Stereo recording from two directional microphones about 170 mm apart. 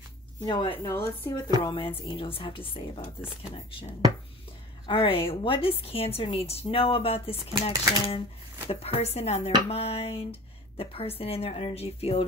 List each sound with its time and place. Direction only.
0.5 s a woman's voice: 30° left (ahead or behind)
0.8 s a woman's voice: 15° left (ahead or behind)
1.6 s a woman's voice: 30° left (ahead or behind)
4.8 s a woman's voice: 30° left (ahead or behind)